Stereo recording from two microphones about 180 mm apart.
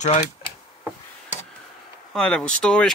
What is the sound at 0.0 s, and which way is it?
Speech, 40° left (ahead or behind).